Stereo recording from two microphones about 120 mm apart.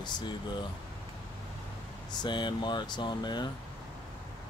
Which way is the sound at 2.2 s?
40° left (ahead or behind).